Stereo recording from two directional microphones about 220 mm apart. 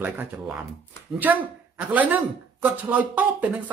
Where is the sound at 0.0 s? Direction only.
5° right (ahead or behind).